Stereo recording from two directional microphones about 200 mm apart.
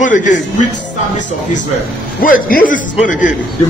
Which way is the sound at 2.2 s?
45° left (ahead or behind).